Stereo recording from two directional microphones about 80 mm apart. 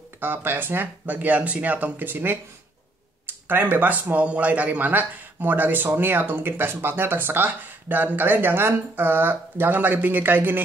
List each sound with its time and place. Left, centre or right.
0.2 s speech: right
3.4 s speech: right